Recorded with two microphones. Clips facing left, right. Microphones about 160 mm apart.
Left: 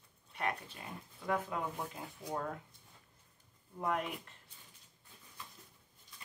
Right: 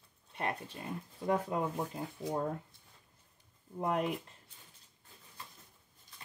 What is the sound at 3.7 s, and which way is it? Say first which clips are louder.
Speech: right 4 dB; 35° right (ahead or behind).